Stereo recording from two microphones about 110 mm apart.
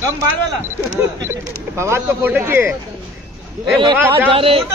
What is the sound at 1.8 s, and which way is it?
Speech, 20° right (ahead or behind).